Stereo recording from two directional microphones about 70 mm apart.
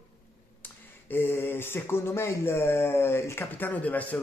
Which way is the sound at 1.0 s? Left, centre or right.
Left.